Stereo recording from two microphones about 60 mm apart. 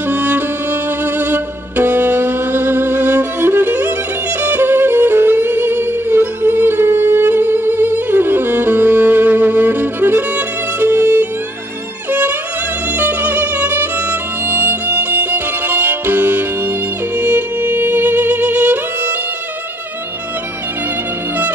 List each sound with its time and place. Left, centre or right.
0.0 s music: right